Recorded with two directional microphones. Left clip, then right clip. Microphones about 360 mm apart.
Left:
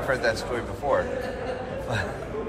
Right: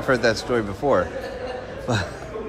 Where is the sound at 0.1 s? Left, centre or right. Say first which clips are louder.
Right 5 dB; centre.